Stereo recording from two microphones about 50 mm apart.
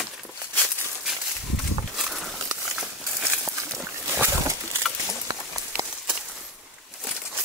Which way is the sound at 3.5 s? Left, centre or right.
Right.